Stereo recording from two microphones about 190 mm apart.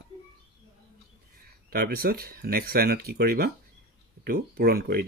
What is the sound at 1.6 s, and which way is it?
Speech, 50° right (ahead or behind).